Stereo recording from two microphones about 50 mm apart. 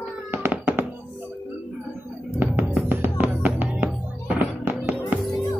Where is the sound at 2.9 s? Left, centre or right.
Right.